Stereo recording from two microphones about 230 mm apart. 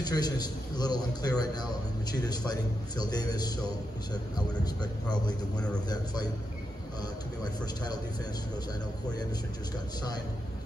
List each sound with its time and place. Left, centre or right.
0.0 s a man's voice: centre
7.4 s a man's voice: centre